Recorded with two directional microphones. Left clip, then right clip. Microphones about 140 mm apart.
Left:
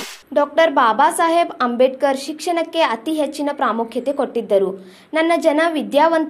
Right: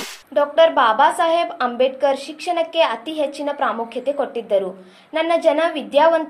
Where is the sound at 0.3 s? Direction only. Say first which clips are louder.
Even; 30° left (ahead or behind).